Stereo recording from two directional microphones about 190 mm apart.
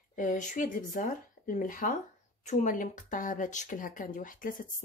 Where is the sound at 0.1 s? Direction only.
45° left (ahead or behind).